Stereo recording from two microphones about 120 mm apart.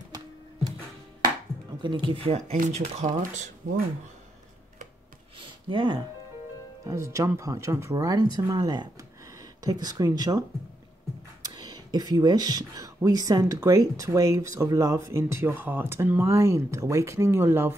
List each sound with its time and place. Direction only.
1.8 s speech: 40° right (ahead or behind); by 3.5 s 80° right
5.4 s a sound: 45° right (ahead or behind)
6.9 s speech: 25° right (ahead or behind)
11.4 s speech: 35° right (ahead or behind)